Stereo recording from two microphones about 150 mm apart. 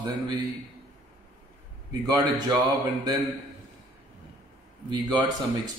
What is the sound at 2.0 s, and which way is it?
Speech, 30° right (ahead or behind).